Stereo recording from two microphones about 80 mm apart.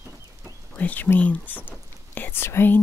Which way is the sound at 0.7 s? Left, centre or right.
Left.